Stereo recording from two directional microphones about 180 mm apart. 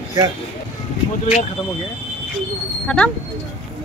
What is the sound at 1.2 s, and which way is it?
Speech, 40° left (ahead or behind).